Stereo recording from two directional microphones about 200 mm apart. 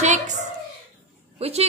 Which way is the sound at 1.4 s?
30° right (ahead or behind).